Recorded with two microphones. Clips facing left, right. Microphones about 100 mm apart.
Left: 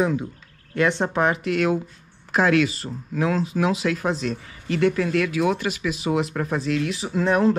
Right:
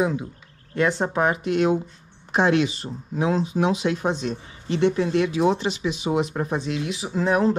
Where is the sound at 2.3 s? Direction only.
30° right (ahead or behind).